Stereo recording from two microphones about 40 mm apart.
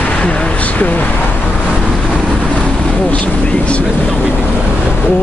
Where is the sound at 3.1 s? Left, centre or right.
Left.